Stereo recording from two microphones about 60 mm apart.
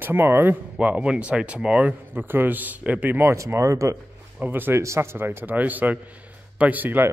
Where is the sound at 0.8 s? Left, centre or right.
Right.